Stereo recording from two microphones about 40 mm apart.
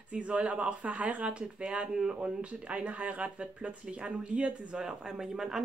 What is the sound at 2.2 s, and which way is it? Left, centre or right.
Speech, right.